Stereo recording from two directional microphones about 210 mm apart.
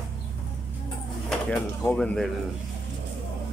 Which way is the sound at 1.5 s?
5° left (ahead or behind).